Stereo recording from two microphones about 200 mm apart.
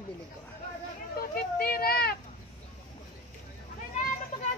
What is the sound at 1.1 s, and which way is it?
Children playing, 50° left (ahead or behind).